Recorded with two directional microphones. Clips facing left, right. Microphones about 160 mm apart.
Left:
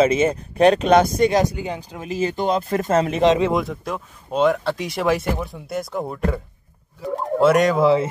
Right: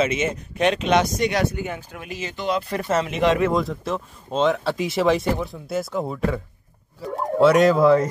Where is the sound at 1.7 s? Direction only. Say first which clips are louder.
Left 4 dB; 30° left (ahead or behind).